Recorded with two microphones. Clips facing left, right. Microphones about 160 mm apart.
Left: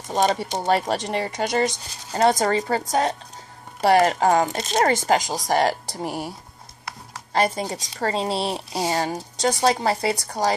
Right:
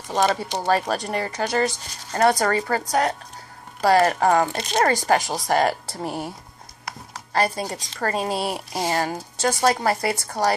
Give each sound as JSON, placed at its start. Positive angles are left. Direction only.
{"t": 0.1, "sound": "speech", "side_deg": 20}